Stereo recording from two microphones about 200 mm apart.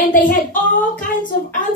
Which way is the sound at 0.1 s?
40° left (ahead or behind).